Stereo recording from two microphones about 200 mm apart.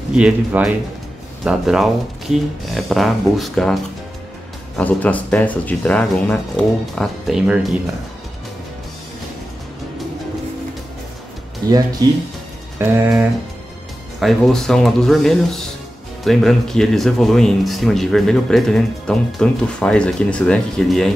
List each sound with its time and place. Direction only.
0.1 s speech: 5° right (ahead or behind)
12.0 s speech: 20° right (ahead or behind)
14.2 s speech: centre (ahead or behind)